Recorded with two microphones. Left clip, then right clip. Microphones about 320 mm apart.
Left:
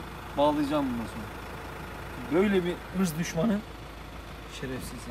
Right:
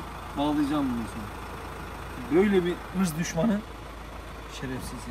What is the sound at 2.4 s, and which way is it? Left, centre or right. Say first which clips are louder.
Speech: right 3 dB; centre.